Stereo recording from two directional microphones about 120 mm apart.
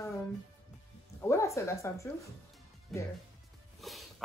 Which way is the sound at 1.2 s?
25° left (ahead or behind).